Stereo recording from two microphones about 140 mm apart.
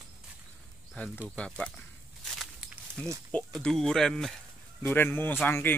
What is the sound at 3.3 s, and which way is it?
Speech, 5° left (ahead or behind).